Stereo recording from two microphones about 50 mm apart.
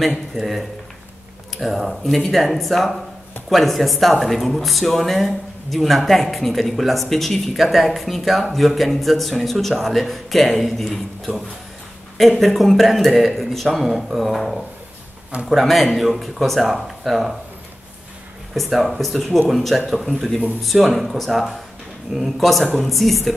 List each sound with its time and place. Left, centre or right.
0.3 s speech: centre
18.5 s speech: centre